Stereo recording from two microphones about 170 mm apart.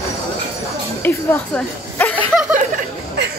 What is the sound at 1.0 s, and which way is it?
Speech, 10° left (ahead or behind).